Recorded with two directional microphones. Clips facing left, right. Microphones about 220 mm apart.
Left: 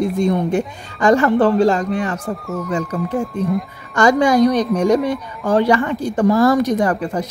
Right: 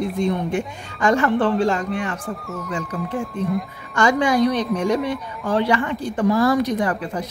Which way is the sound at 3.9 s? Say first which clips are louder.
Left 4 dB; 40° left (ahead or behind).